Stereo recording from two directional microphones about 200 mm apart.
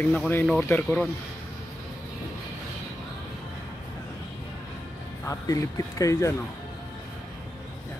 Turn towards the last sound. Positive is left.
turn(degrees=15)  # may be behind; listen again after turning